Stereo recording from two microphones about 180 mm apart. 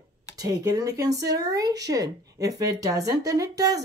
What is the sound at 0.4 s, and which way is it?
Speech, 20° right (ahead or behind).